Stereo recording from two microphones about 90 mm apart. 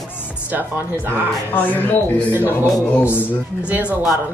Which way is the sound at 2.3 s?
25° right (ahead or behind).